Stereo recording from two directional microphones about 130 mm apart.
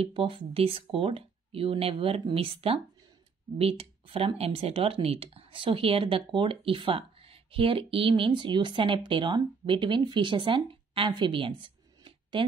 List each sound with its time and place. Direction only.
0.0 s speech: 40° right (ahead or behind)